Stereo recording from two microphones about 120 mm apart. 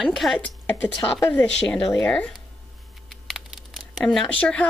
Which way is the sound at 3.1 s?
Centre (ahead or behind).